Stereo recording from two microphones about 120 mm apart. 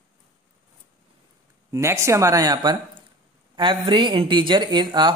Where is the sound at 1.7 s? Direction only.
25° right (ahead or behind).